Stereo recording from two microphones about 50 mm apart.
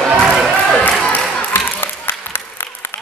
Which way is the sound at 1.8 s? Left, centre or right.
Left.